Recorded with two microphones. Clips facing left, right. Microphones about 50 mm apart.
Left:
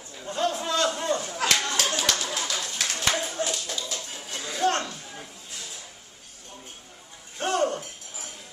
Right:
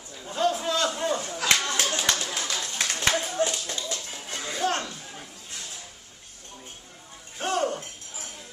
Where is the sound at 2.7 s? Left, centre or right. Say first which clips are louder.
Right 2 dB; centre.